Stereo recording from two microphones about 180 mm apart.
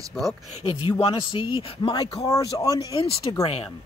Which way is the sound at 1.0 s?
30° left (ahead or behind).